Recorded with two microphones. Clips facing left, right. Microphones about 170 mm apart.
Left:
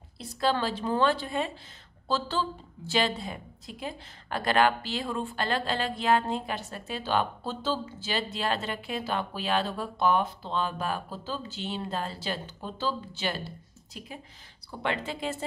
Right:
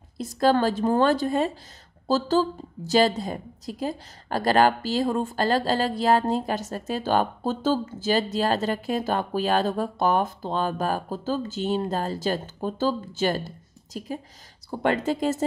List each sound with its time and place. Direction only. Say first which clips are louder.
0.2 s a woman's voice: right 7 dB; 45° right (ahead or behind)